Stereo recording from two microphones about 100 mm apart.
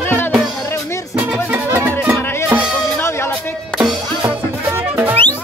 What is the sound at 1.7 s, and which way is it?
Music, 20° right (ahead or behind).